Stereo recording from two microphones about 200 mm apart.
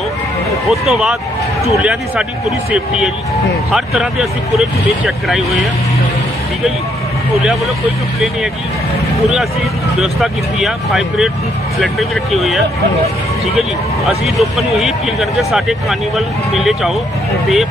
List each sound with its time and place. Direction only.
0.7 s speech: centre (ahead or behind)
3.7 s speech: centre (ahead or behind)
9.9 s speech: centre (ahead or behind)
13.6 s speech: centre (ahead or behind)